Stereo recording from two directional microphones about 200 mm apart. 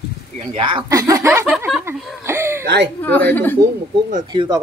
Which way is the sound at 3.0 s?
10° left (ahead or behind).